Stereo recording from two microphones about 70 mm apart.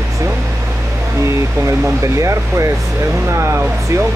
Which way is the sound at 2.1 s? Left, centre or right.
Right.